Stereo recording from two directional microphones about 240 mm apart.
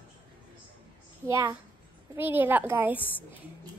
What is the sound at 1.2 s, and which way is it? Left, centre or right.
A child's voice, centre.